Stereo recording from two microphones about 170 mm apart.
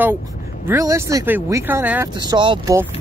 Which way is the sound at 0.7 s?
15° right (ahead or behind).